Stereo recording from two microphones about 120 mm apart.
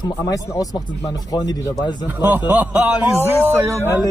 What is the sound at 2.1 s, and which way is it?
Speech, 15° right (ahead or behind).